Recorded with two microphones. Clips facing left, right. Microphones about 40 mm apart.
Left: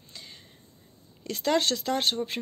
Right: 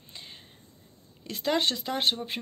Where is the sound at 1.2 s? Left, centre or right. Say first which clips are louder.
Left 2 dB; centre.